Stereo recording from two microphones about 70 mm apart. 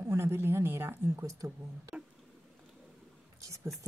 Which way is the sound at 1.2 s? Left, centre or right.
Right.